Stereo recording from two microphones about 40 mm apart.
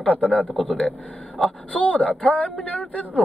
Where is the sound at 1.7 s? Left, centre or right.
Left.